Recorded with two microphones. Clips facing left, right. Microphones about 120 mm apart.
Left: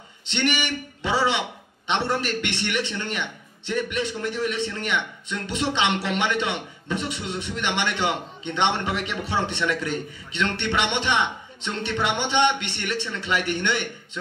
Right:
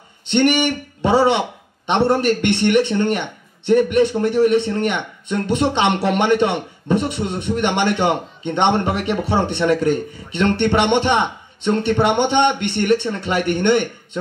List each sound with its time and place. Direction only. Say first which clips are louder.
0.3 s a man's voice: right 9 dB; 50° right (ahead or behind)